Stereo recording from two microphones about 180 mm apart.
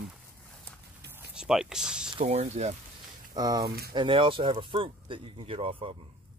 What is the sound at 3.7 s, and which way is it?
Speech, 60° right (ahead or behind).